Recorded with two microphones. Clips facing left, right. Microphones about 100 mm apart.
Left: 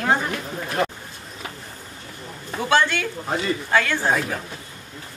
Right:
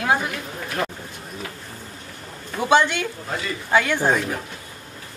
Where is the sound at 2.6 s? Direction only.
15° right (ahead or behind).